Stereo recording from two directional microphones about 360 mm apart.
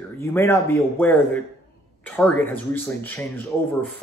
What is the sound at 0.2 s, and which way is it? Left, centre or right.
Speech, centre.